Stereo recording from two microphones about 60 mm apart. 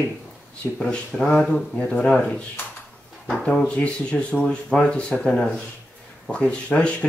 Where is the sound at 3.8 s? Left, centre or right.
Centre.